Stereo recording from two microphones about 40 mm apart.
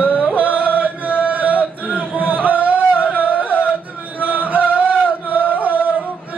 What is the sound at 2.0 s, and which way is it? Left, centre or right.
Music, right.